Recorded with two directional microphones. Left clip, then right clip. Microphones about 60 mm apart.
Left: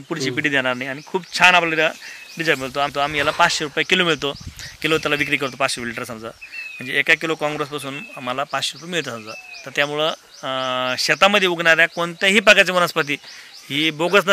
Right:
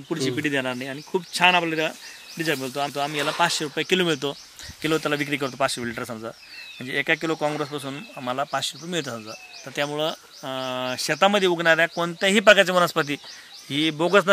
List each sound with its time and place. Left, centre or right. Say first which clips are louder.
0.1 s speech: left 5 dB; left
4.8 s speech: left 5 dB; centre
9.3 s speech: left 6 dB; left